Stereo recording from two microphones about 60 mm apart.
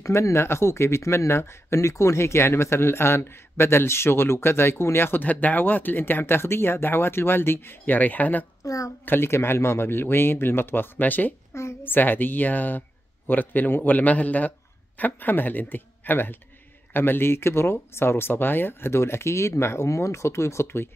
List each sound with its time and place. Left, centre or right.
0.0 s speech: left
8.6 s a child's voice: left
9.0 s a man's voice: left